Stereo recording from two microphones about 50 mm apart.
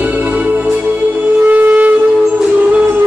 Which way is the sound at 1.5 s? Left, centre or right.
Right.